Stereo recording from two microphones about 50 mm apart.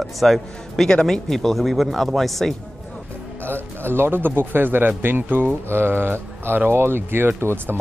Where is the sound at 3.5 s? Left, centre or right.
Right.